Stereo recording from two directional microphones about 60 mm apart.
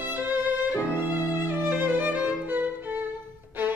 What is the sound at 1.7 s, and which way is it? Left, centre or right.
Music, right.